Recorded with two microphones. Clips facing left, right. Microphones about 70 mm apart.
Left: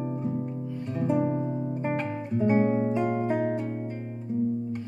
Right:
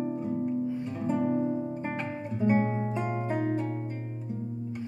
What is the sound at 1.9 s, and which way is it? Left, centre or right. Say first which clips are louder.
Guitar: left 5 dB; centre.